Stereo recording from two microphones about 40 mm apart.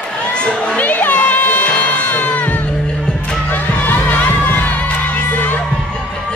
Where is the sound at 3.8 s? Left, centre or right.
Left.